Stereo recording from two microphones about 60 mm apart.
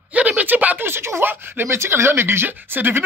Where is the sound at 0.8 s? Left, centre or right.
Right.